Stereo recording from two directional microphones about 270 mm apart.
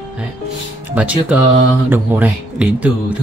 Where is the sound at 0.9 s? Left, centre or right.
Centre.